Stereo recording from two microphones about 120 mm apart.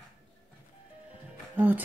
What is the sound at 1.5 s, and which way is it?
Speech, 15° right (ahead or behind).